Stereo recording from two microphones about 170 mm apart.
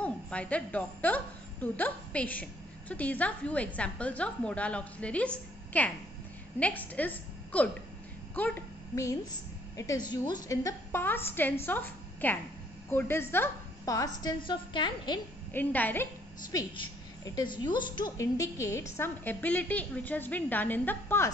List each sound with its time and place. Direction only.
0.0 s a woman's voice: 5° left (ahead or behind); by 15.1 s 25° left (ahead or behind)
15.5 s a woman's voice: 10° left (ahead or behind)
16.5 s a woman's voice: 25° left (ahead or behind)